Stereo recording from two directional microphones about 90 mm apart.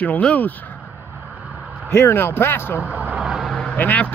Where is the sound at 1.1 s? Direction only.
20° right (ahead or behind).